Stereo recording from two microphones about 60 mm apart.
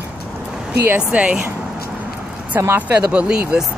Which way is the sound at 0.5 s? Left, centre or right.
Centre.